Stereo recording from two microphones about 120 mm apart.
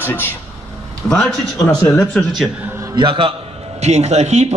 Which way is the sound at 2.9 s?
45° right (ahead or behind).